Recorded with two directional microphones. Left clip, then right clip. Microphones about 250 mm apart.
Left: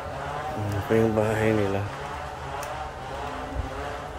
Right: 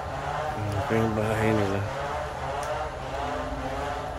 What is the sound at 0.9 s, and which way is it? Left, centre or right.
Music, centre.